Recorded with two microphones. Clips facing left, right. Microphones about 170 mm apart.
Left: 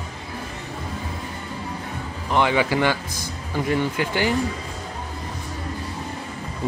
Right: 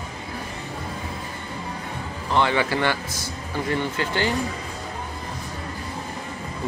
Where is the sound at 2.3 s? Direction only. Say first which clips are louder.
Left 2 dB; 15° left (ahead or behind).